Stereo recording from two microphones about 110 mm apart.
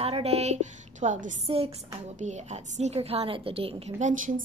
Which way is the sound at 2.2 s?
90° right.